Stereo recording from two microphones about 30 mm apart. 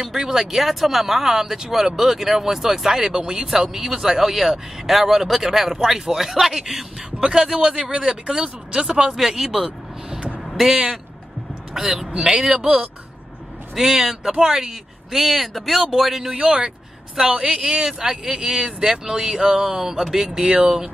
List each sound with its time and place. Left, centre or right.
0.0 s speech: centre
3.1 s speech: right
3.7 s speech: centre
7.2 s speech: right
7.7 s speech: right
8.0 s speech: right
9.1 s speech: centre
10.5 s a sound: centre
11.7 s speech: centre
13.7 s speech: centre
17.6 s speech: right